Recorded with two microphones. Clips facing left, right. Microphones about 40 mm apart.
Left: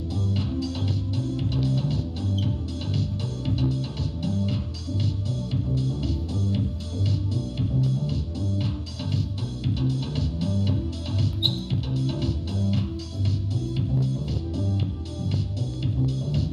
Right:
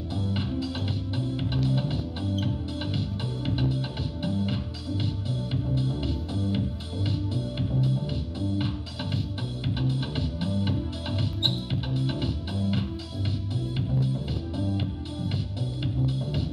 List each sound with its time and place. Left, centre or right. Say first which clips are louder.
0.3 s music: left 1 dB; right